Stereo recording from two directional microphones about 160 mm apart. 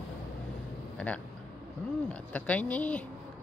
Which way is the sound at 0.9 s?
5° left (ahead or behind).